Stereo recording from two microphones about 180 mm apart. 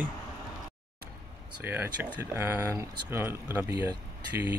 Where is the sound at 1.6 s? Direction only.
10° right (ahead or behind).